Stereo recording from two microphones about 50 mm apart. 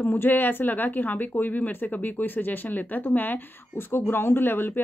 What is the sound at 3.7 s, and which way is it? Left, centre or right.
Speech, left.